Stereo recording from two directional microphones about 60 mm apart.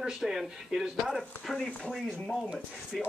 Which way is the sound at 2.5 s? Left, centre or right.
Centre.